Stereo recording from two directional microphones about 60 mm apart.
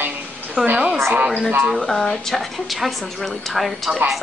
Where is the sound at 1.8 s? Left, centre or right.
Centre.